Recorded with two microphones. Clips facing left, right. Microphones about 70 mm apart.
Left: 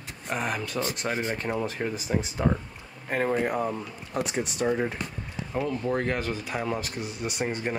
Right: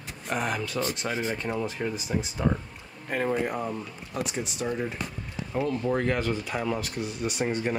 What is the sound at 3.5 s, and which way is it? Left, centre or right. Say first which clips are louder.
Speech: left 3 dB; centre.